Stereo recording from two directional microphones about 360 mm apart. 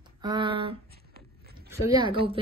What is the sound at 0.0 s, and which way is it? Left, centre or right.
Speech, centre.